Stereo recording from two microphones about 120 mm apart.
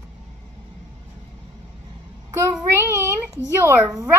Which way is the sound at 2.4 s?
25° right (ahead or behind).